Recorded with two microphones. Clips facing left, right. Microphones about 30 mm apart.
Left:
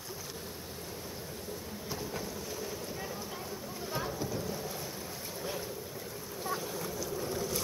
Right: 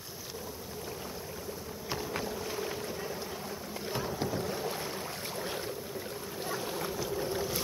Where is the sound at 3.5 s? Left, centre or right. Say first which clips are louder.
Right 2 dB; right.